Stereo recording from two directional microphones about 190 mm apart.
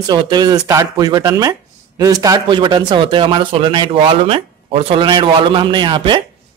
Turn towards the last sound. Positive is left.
turn(degrees=-25)  # may be behind; listen again after turning